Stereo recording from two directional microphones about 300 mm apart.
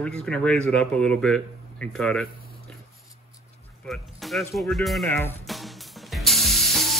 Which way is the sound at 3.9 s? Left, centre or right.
Centre.